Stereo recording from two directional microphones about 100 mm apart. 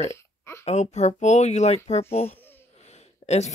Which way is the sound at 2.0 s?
90° left.